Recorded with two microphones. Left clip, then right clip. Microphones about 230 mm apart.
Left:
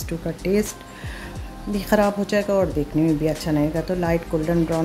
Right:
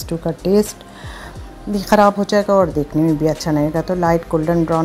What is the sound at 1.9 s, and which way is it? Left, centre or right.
Speech, right.